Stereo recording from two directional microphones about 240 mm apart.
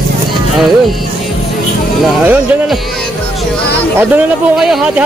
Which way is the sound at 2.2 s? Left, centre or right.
Centre.